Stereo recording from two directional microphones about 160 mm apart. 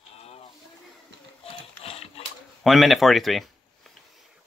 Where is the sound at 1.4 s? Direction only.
40° left (ahead or behind).